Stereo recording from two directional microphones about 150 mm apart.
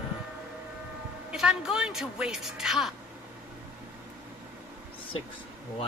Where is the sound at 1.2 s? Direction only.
5° right (ahead or behind).